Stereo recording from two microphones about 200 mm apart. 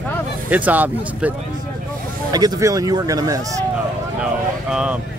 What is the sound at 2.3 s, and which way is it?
Speech, 20° right (ahead or behind).